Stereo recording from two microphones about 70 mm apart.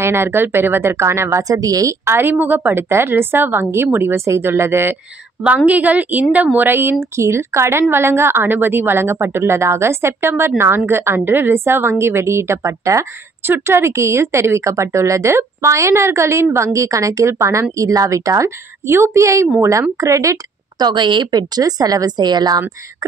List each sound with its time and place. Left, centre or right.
0.0 s a woman's voice: right
1.5 s a woman's voice: right
2.0 s a woman's voice: right
2.3 s a woman's voice: right
5.7 s a woman's voice: right
13.4 s speech: right
18.9 s speech: right
20.8 s speech: right